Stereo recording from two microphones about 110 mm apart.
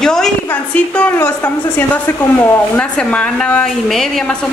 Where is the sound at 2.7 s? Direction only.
10° left (ahead or behind).